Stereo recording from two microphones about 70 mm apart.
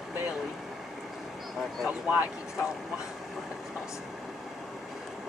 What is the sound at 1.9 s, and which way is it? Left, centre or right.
Speech, centre.